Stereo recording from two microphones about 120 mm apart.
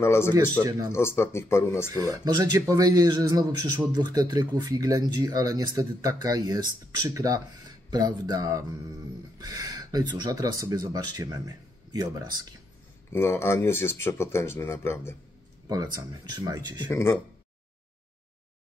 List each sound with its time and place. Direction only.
0.0 s speech: 20° left (ahead or behind)
0.3 s speech: 30° right (ahead or behind)
0.9 s speech: 20° left (ahead or behind)
1.9 s speech: 30° right (ahead or behind)
13.1 s speech: 20° left (ahead or behind)
15.7 s speech: 30° right (ahead or behind)
16.9 s speech: 20° left (ahead or behind)